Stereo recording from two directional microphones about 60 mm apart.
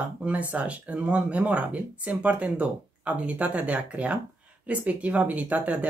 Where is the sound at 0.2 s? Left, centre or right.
Right.